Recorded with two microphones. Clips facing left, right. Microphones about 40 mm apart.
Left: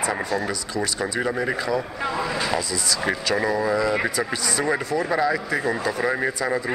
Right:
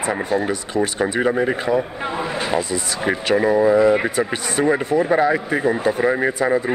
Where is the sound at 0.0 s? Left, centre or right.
Right.